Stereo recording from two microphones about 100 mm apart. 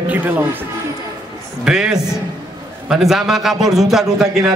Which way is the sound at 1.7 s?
5° right (ahead or behind).